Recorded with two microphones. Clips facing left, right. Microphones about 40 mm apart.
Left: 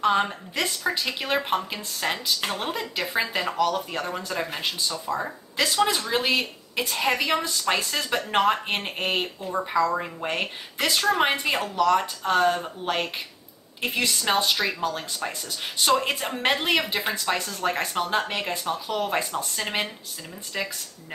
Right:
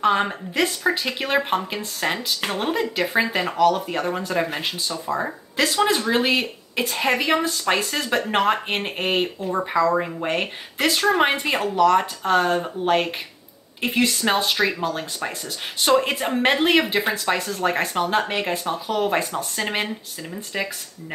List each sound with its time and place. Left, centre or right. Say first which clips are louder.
0.0 s speech: right 2 dB; centre
5.0 s speech: right 3 dB; right